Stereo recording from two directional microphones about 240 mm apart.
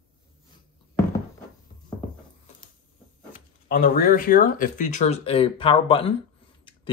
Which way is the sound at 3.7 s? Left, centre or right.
Left.